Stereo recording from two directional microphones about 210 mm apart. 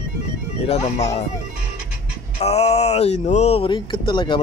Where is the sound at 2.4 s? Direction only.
30° left (ahead or behind).